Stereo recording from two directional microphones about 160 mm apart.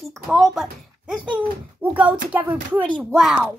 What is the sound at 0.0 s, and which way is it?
Speech, centre (ahead or behind).